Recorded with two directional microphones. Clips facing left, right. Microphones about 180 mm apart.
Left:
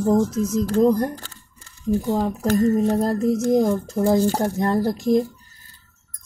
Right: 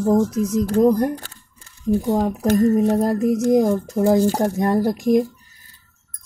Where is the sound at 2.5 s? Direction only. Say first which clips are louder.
Right 2 dB; 10° right (ahead or behind).